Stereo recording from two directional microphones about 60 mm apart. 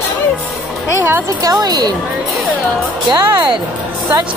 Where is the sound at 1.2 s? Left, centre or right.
Right.